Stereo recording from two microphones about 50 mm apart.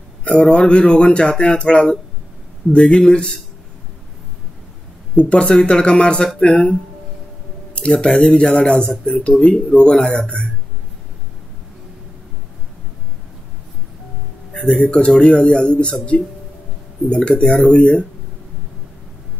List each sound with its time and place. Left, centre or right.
0.2 s speech: left
5.1 s speech: centre
7.7 s speech: left
14.6 s speech: left
17.5 s speech: left